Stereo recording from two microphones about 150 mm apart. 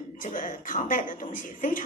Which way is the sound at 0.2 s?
60° left (ahead or behind).